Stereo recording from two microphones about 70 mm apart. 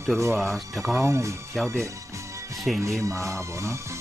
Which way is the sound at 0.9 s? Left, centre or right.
Right.